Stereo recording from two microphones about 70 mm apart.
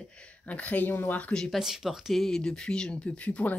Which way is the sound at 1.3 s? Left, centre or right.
Centre.